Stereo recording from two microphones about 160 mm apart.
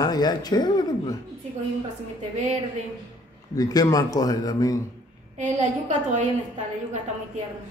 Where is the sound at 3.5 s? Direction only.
25° left (ahead or behind).